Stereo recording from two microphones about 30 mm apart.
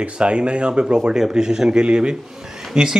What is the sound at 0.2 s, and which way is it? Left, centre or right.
Speech, right.